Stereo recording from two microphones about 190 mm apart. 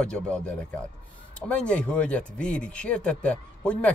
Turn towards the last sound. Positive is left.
turn(degrees=5)  # may be behind; listen again after turning